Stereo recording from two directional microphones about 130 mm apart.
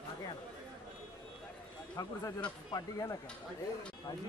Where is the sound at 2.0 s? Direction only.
30° left (ahead or behind).